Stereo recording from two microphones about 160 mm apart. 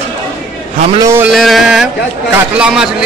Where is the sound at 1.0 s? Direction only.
15° right (ahead or behind).